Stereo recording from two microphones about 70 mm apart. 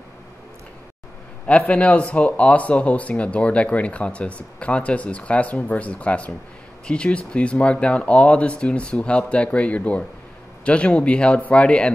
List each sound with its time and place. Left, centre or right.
1.7 s speech: centre